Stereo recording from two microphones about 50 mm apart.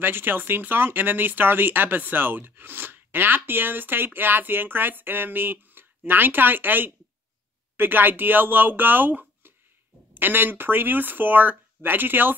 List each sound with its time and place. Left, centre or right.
0.0 s speech: right